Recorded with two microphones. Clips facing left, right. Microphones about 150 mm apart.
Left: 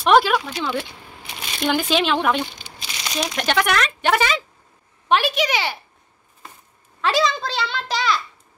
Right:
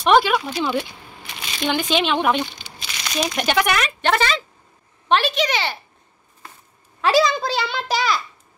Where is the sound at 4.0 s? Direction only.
10° left (ahead or behind).